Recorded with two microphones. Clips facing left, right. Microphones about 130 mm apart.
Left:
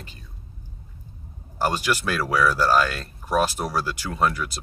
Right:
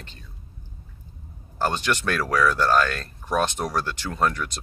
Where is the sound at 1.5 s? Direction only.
10° left (ahead or behind).